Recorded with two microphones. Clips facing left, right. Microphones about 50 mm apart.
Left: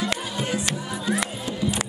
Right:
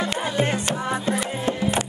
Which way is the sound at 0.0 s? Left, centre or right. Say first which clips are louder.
Right 4 dB; right.